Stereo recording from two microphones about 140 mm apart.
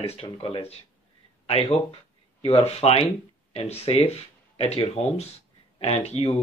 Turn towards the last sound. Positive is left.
turn(degrees=45)  # may be behind; listen again after turning